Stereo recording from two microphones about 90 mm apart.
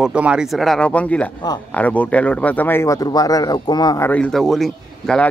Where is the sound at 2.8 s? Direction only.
40° left (ahead or behind).